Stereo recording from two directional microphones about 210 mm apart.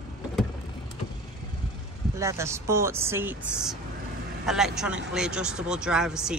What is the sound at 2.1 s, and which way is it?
Speech, 15° right (ahead or behind).